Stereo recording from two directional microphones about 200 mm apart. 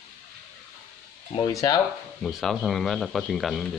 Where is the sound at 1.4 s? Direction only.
20° left (ahead or behind).